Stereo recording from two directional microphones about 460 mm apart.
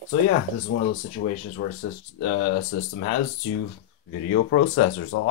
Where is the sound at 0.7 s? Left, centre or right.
Left.